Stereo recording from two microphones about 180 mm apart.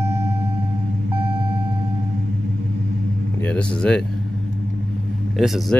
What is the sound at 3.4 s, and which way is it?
Speech, 5° left (ahead or behind).